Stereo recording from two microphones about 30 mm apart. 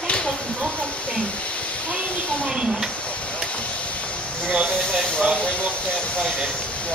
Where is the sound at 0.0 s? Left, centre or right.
Left.